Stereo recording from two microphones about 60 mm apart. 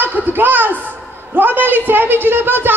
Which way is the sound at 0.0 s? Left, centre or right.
Right.